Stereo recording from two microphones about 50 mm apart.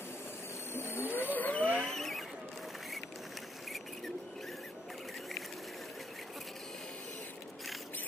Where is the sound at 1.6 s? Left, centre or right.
Left.